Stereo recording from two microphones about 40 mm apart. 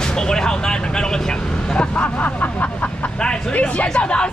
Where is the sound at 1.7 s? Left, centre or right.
Left.